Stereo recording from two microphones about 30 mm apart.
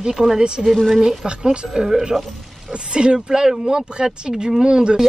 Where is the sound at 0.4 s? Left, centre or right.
Right.